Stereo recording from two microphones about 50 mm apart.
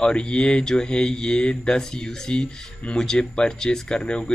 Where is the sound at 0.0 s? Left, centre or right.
Left.